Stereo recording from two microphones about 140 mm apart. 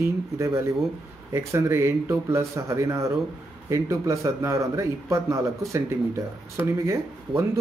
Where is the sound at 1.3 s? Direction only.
20° right (ahead or behind).